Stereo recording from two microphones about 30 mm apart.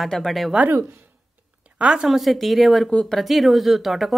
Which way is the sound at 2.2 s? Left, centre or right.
Centre.